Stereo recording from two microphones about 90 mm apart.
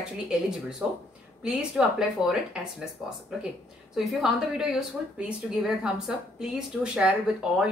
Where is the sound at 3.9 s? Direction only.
Centre (ahead or behind).